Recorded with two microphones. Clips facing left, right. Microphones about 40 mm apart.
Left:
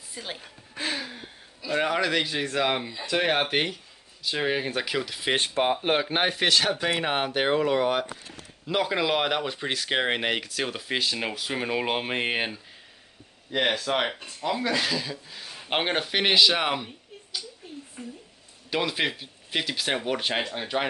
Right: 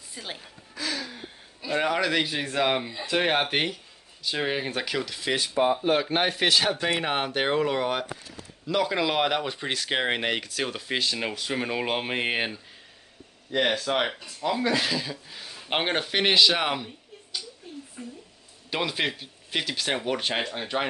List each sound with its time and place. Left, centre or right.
0.1 s a woman's voice: centre
0.7 s a sound: left
1.8 s speech: centre
5.6 s speech: left
5.9 s speech: centre
8.6 s speech: centre
18.0 s speech: centre
18.7 s speech: centre